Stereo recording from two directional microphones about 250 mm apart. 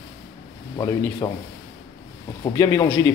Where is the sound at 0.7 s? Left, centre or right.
Centre.